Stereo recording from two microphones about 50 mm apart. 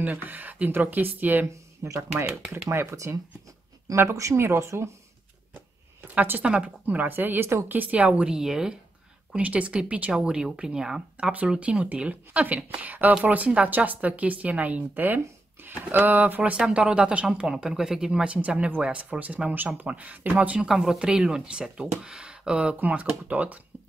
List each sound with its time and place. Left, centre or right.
0.0 s a woman's voice: right
2.7 s speech: right
3.9 s speech: right
6.4 s a woman's voice: right
7.7 s speech: right
8.3 s speech: centre
9.4 s speech: right
11.3 s a woman's voice: right
16.5 s speech: centre
17.5 s speech: centre
18.2 s speech: right
20.6 s speech: centre
22.8 s a woman's voice: right